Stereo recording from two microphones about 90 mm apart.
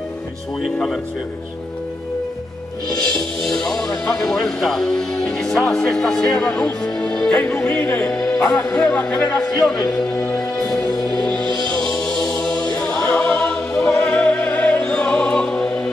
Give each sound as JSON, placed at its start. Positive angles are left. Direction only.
{"t": 3.1, "sound": "speech", "side_deg": 5}
{"t": 9.8, "sound": "music", "side_deg": 5}
{"t": 11.4, "sound": "music", "side_deg": -55}
{"t": 11.7, "sound": "choir", "side_deg": 5}
{"t": 12.7, "sound": "music", "side_deg": 10}